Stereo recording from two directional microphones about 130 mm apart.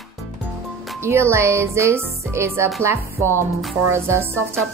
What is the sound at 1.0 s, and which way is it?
Speech, 20° right (ahead or behind).